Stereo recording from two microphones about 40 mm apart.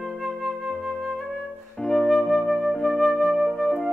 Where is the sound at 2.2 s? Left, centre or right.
Centre.